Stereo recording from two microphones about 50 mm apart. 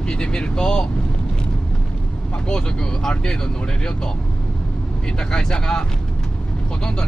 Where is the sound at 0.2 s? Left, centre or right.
Centre.